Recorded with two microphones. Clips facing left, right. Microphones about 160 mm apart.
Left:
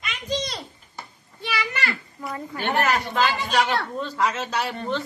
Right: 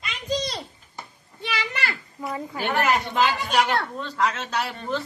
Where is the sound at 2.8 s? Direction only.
20° right (ahead or behind).